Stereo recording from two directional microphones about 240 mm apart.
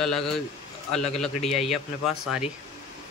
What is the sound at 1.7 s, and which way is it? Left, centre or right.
Speech, centre.